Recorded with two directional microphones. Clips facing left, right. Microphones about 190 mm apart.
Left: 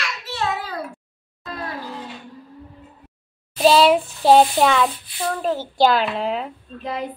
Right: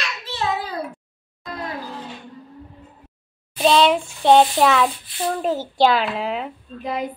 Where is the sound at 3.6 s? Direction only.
5° left (ahead or behind).